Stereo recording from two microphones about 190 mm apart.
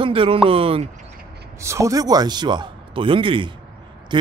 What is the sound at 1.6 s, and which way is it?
A man's voice, 15° right (ahead or behind).